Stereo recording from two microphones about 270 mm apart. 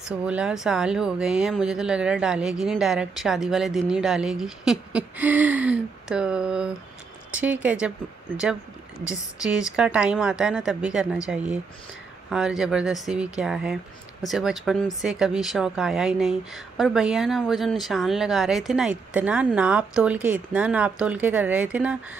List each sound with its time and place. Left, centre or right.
0.2 s speech: centre
9.0 s speech: centre